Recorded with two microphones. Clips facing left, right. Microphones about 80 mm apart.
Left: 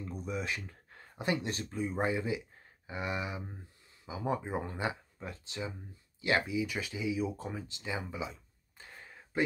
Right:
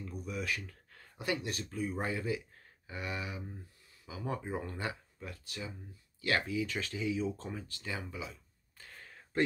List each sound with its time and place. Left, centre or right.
0.0 s speech: left